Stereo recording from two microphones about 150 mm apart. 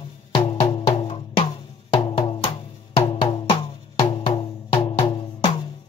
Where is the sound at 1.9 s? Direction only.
35° left (ahead or behind).